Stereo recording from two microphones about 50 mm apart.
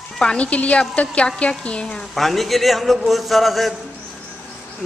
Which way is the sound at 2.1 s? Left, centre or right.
Centre.